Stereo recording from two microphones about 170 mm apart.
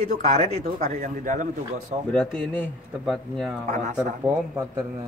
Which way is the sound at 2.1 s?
5° left (ahead or behind).